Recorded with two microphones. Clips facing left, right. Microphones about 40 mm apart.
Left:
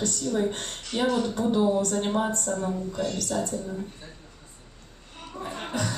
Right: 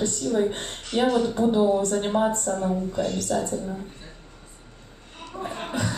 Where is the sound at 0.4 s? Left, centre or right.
Right.